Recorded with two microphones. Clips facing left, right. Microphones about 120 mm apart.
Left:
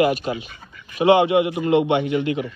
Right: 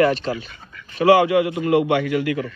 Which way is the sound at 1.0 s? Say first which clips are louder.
Right 1 dB; 25° left (ahead or behind).